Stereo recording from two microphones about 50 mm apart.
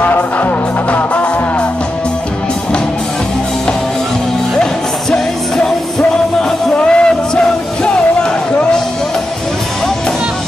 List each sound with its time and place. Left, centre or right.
0.0 s music: left
5.1 s music: centre